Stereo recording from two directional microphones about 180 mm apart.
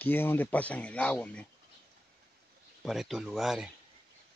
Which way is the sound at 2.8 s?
Centre (ahead or behind).